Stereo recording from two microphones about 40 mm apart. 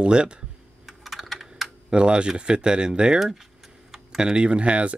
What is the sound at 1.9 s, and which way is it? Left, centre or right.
Speech, right.